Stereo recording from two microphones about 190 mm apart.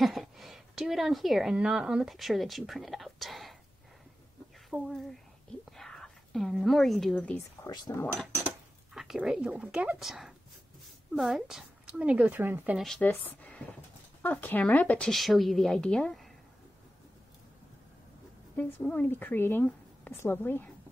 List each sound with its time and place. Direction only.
0.0 s a woman's voice: centre (ahead or behind)
4.6 s a woman's voice: centre (ahead or behind)
5.7 s whispering: centre (ahead or behind)
7.6 s speech: 20° left (ahead or behind)
8.0 s a woman's voice: 5° left (ahead or behind)
12.8 s a woman's voice: 5° left (ahead or behind)
18.8 s speech: 5° left (ahead or behind)